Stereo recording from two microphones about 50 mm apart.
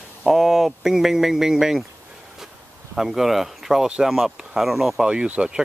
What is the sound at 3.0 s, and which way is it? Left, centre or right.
Speech, centre.